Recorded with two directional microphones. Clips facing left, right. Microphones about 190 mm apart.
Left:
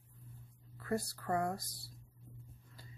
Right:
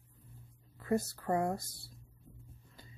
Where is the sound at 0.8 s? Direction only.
20° right (ahead or behind).